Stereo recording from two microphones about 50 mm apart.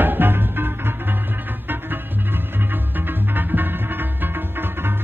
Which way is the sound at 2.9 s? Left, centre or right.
Right.